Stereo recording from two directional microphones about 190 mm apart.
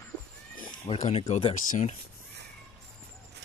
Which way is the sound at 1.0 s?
35° left (ahead or behind).